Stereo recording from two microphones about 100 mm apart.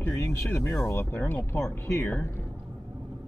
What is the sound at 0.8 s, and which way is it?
Speech, 25° left (ahead or behind).